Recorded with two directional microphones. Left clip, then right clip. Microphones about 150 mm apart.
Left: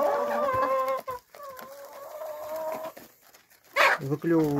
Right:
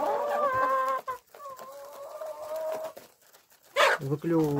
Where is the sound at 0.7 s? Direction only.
50° right (ahead or behind).